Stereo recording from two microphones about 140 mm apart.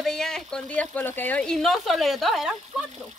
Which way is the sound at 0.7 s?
10° left (ahead or behind).